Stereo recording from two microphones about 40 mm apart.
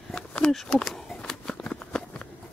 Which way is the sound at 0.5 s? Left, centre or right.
Centre.